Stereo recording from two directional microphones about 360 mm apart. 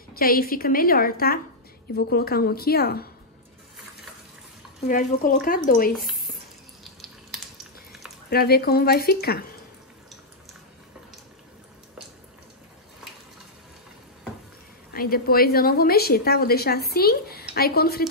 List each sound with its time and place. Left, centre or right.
0.1 s a woman's voice: left
4.8 s a woman's voice: left
5.9 s a sound: centre
8.3 s a woman's voice: left
14.9 s a woman's voice: left